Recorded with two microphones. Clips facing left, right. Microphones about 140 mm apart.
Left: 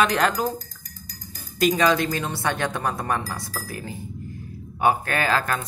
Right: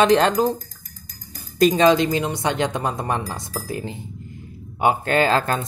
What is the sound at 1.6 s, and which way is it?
Speech, 30° right (ahead or behind).